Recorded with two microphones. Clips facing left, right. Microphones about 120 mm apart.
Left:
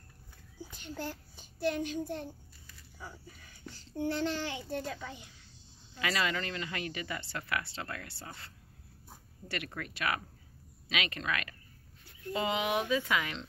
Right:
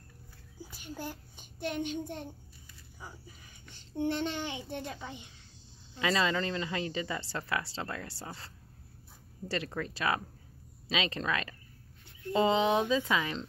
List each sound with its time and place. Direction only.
0.6 s a child's voice: 10° right (ahead or behind)
3.7 s speech: 20° right (ahead or behind)
9.5 s speech: 30° right (ahead or behind)